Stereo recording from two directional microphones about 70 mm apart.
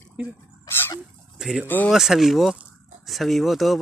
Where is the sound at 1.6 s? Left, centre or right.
Left.